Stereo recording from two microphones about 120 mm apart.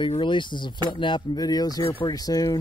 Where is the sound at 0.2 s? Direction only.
40° left (ahead or behind).